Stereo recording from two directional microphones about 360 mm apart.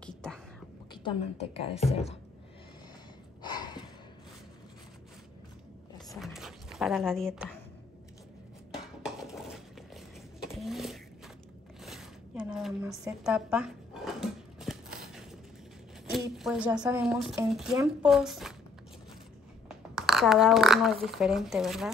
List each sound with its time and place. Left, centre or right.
1.0 s a woman's voice: centre
3.4 s gasp: centre
6.1 s a sound: centre
9.0 s dishes: centre
10.4 s a sound: centre
11.8 s zipper: centre
16.1 s speech: centre
20.0 s speech: centre